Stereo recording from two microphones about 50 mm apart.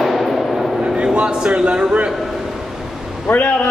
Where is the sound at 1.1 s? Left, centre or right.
Centre.